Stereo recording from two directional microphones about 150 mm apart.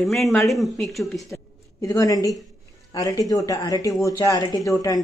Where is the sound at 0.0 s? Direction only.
Centre (ahead or behind).